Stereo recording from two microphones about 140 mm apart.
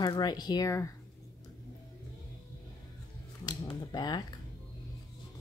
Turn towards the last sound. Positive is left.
turn(degrees=30)  # may be behind; listen again after turning